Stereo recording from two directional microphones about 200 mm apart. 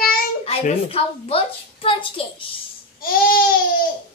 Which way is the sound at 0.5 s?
30° left (ahead or behind).